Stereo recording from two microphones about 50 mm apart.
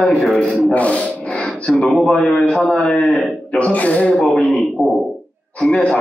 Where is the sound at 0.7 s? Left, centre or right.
Left.